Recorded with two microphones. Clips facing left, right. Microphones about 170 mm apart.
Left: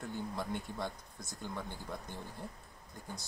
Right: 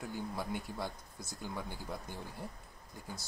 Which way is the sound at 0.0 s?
Centre (ahead or behind).